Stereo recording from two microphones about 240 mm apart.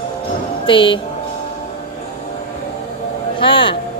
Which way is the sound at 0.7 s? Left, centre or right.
Left.